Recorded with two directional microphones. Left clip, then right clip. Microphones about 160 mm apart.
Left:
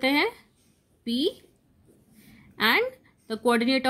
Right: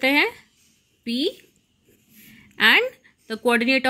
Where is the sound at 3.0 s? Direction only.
10° right (ahead or behind).